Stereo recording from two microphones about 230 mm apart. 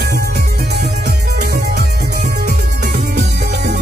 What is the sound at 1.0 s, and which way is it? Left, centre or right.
Music, right.